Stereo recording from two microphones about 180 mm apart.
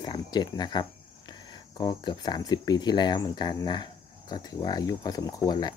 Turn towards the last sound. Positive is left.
turn(degrees=20)  # may be behind; listen again after turning